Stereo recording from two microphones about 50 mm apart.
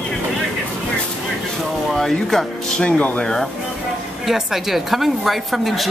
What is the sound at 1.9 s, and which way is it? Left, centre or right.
Speech, centre.